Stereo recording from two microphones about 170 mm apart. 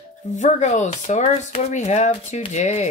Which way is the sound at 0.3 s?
45° left (ahead or behind).